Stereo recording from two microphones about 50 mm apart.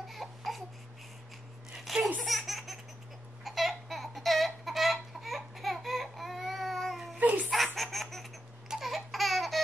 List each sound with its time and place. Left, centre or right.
0.1 s baby cry: centre
1.9 s laughter: centre
3.4 s a sound: centre
7.2 s giggle: right
7.5 s baby laughter: centre
8.6 s a sound: centre